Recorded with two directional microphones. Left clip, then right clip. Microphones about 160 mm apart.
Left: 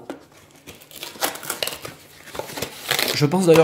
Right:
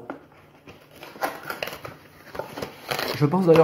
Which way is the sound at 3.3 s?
20° left (ahead or behind).